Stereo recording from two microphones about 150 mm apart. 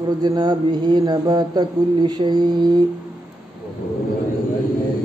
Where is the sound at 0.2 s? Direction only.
30° right (ahead or behind).